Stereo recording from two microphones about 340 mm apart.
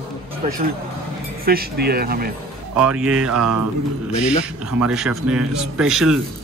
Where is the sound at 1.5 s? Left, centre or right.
Right.